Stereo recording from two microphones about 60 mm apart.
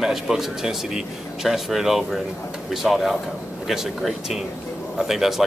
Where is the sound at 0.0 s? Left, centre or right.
Centre.